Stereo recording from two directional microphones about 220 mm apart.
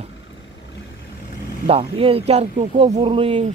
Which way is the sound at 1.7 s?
25° right (ahead or behind).